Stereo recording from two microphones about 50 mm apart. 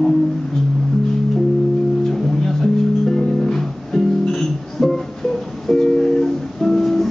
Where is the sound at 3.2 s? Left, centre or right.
Centre.